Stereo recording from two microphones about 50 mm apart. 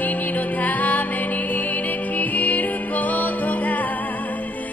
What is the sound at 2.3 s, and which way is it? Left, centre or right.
Music, left.